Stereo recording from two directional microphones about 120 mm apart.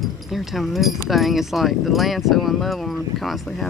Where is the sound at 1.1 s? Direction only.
Centre (ahead or behind).